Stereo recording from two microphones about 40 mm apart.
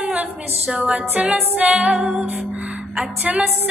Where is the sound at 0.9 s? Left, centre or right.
Right.